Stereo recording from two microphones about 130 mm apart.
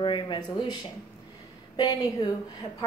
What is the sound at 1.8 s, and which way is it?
Speech, 30° left (ahead or behind).